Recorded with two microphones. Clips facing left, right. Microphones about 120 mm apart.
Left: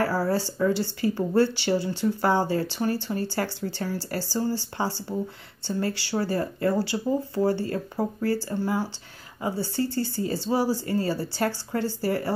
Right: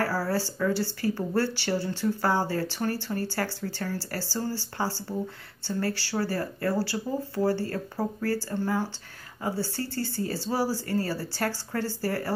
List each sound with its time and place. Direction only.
0.0 s speech: 20° left (ahead or behind)